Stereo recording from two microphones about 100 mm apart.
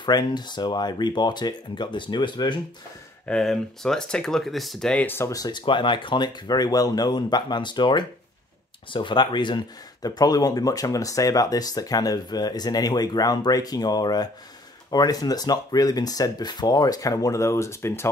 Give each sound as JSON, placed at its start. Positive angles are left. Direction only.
{"t": 0.0, "sound": "speech", "side_deg": 45}
{"t": 3.3, "sound": "speech", "side_deg": 5}
{"t": 5.0, "sound": "speech", "side_deg": 20}
{"t": 5.3, "sound": "speech", "side_deg": 40}
{"t": 5.7, "sound": "speech", "side_deg": 55}
{"t": 10.0, "sound": "speech", "side_deg": 40}